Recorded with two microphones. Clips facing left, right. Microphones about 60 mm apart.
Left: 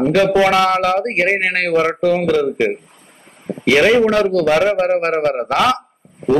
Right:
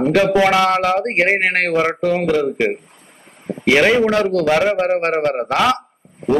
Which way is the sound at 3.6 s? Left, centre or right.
Centre.